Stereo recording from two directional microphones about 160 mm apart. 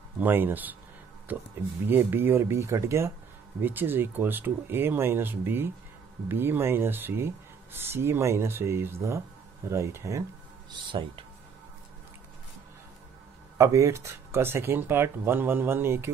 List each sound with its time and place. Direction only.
0.2 s speech: 10° right (ahead or behind)
10.7 s speech: 30° right (ahead or behind)
13.6 s speech: 20° right (ahead or behind)